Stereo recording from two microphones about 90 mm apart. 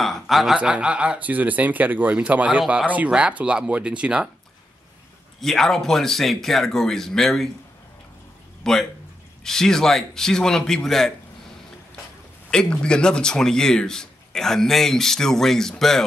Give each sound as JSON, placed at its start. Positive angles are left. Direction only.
{"t": 0.0, "sound": "a sound", "side_deg": 0}
{"t": 0.6, "sound": "speech", "side_deg": -15}
{"t": 5.4, "sound": "speech", "side_deg": 5}
{"t": 8.6, "sound": "speech", "side_deg": 5}
{"t": 12.4, "sound": "speech", "side_deg": 10}